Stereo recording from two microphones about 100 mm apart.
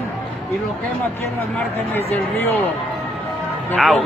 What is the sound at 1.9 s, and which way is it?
Speech, 20° left (ahead or behind).